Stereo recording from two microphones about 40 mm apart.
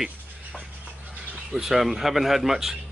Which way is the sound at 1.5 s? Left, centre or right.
Centre.